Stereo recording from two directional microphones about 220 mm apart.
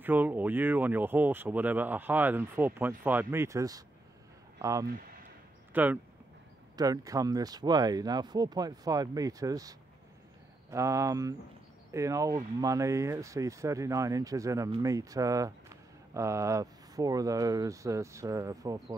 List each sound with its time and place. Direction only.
0.0 s speech: 10° right (ahead or behind)